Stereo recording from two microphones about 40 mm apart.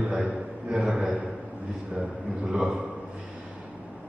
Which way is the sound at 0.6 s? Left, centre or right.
Right.